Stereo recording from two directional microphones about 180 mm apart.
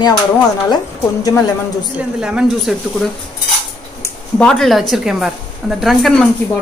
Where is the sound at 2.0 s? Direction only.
5° right (ahead or behind).